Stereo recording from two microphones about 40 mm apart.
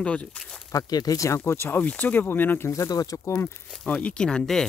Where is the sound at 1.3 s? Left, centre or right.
Left.